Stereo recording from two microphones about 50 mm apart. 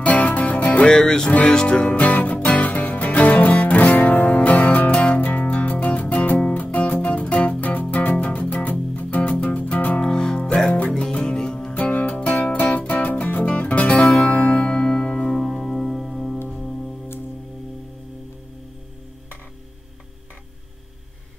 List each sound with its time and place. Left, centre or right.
0.0 s music: left
10.0 s music: centre
15.3 s music: centre